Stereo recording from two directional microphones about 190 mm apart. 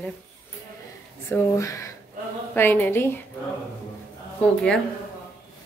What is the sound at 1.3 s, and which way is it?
A woman's voice, 15° left (ahead or behind).